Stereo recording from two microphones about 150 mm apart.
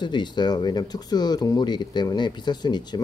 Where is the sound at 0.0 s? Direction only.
30° left (ahead or behind).